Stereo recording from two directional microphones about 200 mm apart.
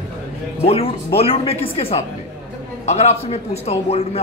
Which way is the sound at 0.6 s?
30° left (ahead or behind).